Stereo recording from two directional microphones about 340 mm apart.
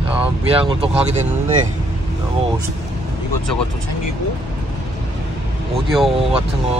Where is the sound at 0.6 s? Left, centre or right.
Centre.